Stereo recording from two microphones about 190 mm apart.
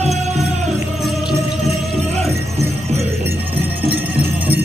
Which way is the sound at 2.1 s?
35° right (ahead or behind).